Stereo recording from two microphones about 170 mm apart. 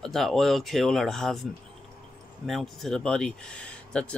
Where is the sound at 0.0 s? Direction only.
Centre (ahead or behind).